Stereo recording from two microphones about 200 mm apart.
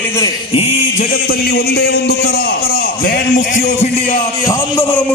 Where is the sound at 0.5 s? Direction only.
45° left (ahead or behind).